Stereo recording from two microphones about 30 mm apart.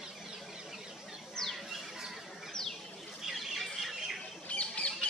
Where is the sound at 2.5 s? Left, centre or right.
Centre.